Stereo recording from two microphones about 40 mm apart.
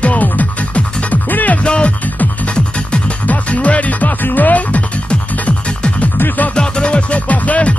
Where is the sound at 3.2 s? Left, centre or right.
Left.